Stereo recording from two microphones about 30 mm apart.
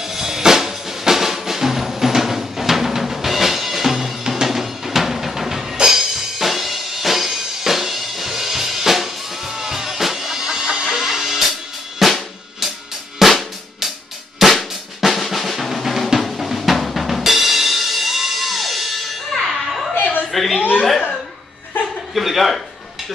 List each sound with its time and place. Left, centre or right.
0.0 s drum: centre
4.3 s drum kit: centre
5.8 s music: centre
12.0 s drum kit: centre
13.2 s drum kit: centre
14.4 s drum: centre
15.0 s drum: centre
17.2 s music: centre
19.9 s a sound: left
20.2 s chuckle: centre
22.1 s a sound: centre